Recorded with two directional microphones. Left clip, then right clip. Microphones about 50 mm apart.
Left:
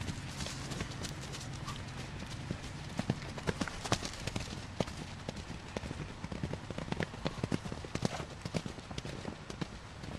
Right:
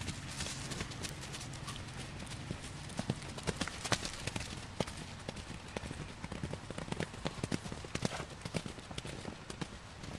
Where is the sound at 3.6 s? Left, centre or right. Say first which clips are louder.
Right 1 dB; right.